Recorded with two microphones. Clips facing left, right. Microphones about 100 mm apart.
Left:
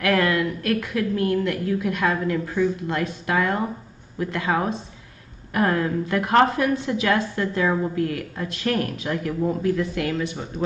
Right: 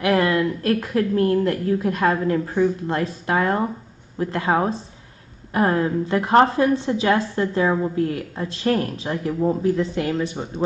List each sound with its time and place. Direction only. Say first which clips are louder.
0.0 s a woman's voice: right 2 dB; 25° right (ahead or behind)